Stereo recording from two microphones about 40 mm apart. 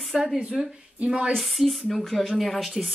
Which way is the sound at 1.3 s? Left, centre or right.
Centre.